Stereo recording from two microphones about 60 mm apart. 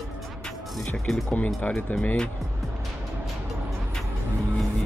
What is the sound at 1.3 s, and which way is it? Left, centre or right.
Speech, left.